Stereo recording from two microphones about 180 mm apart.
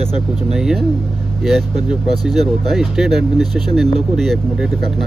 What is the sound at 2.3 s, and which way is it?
Speech, centre (ahead or behind).